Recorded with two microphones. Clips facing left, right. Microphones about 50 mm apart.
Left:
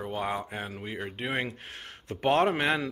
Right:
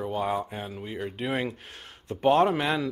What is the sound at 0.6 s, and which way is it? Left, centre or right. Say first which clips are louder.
Speech: right 1 dB; left.